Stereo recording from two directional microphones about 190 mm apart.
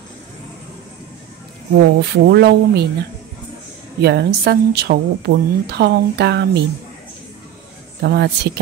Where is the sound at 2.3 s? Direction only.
60° right (ahead or behind).